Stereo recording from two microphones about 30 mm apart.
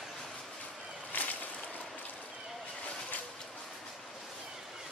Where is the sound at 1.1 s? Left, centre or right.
Left.